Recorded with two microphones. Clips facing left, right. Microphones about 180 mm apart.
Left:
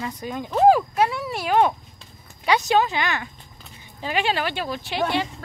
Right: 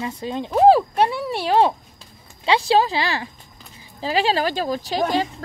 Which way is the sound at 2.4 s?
30° right (ahead or behind).